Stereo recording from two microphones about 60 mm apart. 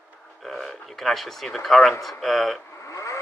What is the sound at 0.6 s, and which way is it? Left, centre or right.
Speech, centre.